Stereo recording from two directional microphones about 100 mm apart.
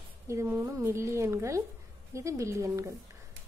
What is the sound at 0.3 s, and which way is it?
A woman's voice, 25° right (ahead or behind).